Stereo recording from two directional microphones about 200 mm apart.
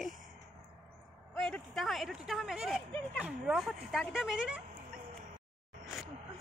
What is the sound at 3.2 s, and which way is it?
Speech, 5° right (ahead or behind).